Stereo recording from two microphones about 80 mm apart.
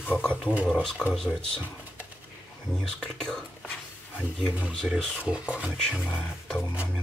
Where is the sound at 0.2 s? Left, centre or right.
Centre.